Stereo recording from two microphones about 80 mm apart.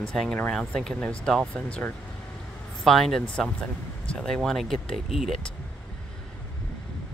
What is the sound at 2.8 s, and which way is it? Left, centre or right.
Speech, centre.